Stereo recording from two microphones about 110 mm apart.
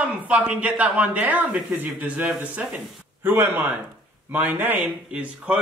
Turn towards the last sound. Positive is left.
turn(degrees=-10)  # may be behind; listen again after turning